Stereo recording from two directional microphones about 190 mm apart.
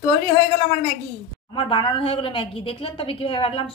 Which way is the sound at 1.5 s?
25° left (ahead or behind).